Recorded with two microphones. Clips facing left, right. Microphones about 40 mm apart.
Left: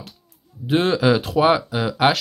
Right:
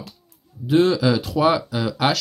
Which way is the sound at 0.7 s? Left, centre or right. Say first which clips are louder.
Even; left.